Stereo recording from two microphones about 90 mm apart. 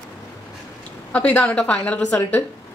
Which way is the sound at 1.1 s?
15° left (ahead or behind).